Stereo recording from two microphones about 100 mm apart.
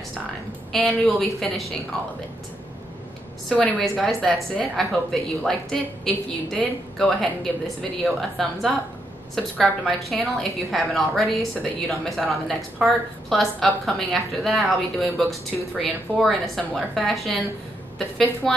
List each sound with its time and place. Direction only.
0.7 s a woman's voice: centre (ahead or behind)
3.8 s a woman's voice: centre (ahead or behind)